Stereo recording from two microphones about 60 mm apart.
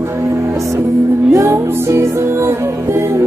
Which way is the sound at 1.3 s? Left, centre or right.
Right.